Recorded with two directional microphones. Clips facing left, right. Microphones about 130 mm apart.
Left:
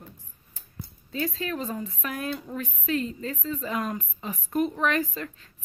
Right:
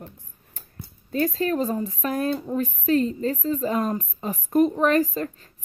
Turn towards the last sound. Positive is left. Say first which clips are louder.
# right 7 dB
turn(degrees=-40)  # may be behind; listen again after turning